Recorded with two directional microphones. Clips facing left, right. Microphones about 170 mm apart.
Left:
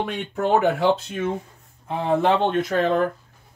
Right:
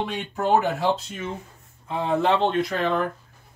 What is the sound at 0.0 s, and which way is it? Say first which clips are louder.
Speech: left 2 dB; 60° left (ahead or behind).